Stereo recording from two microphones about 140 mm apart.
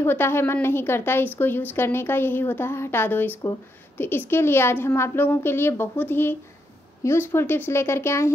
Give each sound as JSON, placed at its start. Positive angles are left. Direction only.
{"t": 0.0, "sound": "a woman's voice", "side_deg": 15}